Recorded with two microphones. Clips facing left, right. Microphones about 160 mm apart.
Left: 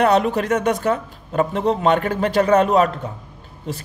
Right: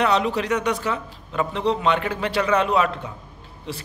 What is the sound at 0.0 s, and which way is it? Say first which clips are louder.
Speech: left 4 dB; 50° left (ahead or behind).